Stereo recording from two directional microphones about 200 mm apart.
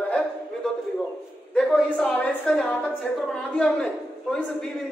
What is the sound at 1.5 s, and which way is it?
A woman's voice, 5° left (ahead or behind).